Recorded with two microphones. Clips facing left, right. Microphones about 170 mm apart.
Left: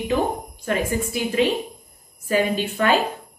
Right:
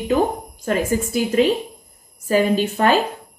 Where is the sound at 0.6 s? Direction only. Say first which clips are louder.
Right 3 dB; 40° right (ahead or behind).